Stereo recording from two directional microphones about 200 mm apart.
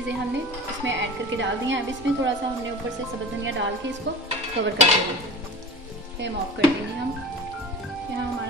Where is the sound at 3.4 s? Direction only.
65° right (ahead or behind).